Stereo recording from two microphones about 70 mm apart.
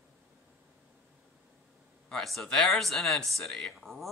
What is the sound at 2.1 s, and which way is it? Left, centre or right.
Speech, centre.